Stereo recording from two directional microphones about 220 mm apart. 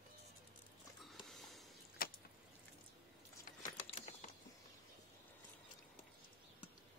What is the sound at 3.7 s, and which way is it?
Typing, 25° left (ahead or behind).